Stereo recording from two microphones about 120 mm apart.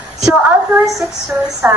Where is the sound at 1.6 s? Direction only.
10° right (ahead or behind).